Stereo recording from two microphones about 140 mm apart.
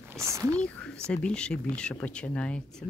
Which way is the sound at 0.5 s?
10° left (ahead or behind).